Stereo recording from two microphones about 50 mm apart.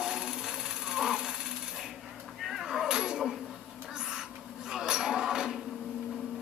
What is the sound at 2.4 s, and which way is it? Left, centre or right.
Cat, centre.